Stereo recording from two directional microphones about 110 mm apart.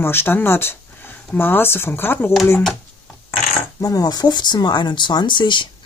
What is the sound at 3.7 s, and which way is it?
Speech, 30° left (ahead or behind).